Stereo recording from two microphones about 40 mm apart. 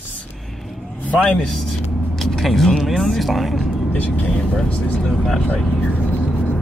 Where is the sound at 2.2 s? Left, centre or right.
Centre.